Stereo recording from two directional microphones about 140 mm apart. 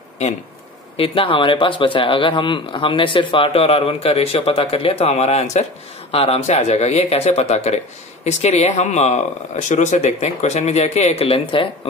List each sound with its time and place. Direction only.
0.9 s speech: 40° left (ahead or behind)